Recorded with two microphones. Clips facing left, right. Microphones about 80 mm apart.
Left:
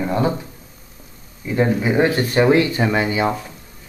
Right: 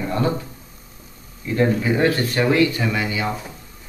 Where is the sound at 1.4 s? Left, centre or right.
Centre.